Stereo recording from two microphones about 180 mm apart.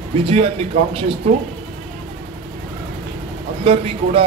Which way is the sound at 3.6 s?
30° right (ahead or behind).